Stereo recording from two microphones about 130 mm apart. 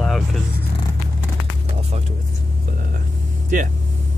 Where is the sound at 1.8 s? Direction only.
55° right (ahead or behind).